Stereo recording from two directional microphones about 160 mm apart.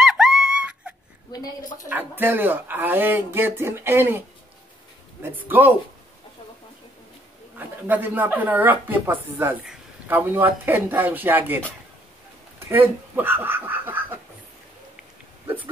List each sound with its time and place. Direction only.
0.0 s a sound: centre (ahead or behind)
1.6 s a woman's voice: 55° left (ahead or behind)
1.9 s speech: 10° right (ahead or behind)
5.3 s speech: 10° right (ahead or behind)
7.5 s speech: 10° right (ahead or behind)
12.5 s a sound: 15° right (ahead or behind)
15.4 s hiccup: 10° right (ahead or behind)